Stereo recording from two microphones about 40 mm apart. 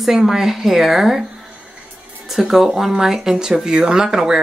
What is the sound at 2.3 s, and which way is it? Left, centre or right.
A woman's voice, centre.